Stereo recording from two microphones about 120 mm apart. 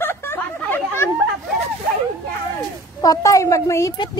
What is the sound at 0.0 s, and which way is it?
Chatter, 15° left (ahead or behind).